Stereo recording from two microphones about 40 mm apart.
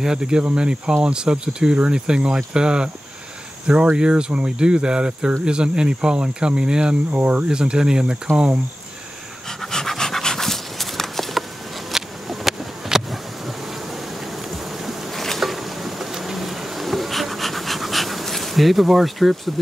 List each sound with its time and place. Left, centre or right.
0.0 s speech: centre
3.9 s speech: right
7.1 s speech: right
7.4 s speech: right
9.6 s pant: centre
11.9 s a sound: centre
14.5 s insect: centre